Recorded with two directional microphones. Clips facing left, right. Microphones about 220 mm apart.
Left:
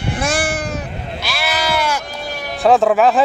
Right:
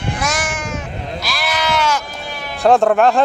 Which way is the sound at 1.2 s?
5° left (ahead or behind).